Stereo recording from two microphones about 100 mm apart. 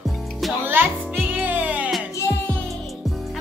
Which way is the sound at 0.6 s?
20° right (ahead or behind).